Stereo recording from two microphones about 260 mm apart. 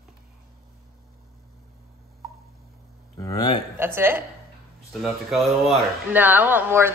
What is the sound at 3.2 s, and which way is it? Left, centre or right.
Speech, centre.